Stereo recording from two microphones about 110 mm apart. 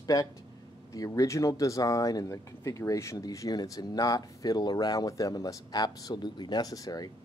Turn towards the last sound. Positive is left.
turn(degrees=35)  # may be behind; listen again after turning